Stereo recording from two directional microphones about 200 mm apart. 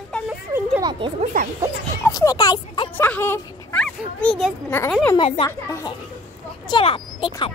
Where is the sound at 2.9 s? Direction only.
10° left (ahead or behind).